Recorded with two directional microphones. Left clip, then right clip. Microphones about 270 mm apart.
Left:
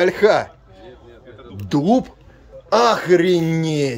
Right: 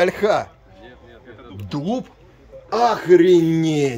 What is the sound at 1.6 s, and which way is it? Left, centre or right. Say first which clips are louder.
Speech: left 8 dB; centre.